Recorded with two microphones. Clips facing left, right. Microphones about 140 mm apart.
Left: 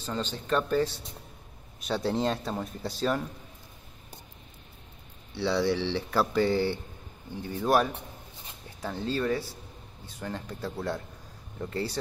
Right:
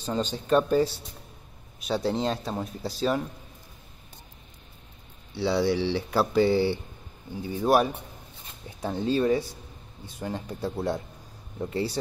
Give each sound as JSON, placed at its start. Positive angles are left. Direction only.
{"t": 0.0, "sound": "speech", "side_deg": -15}
{"t": 1.9, "sound": "speech", "side_deg": 0}
{"t": 5.3, "sound": "speech", "side_deg": -10}